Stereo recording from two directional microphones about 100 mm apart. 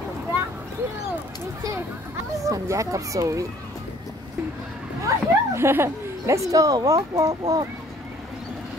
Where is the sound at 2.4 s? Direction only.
35° right (ahead or behind).